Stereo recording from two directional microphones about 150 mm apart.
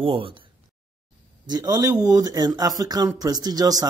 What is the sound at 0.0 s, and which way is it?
Speech, 35° right (ahead or behind).